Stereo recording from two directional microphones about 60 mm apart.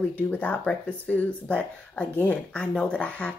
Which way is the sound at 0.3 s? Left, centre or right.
Left.